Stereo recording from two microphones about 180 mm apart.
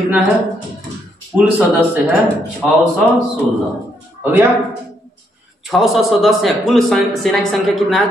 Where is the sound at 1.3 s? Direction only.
10° right (ahead or behind).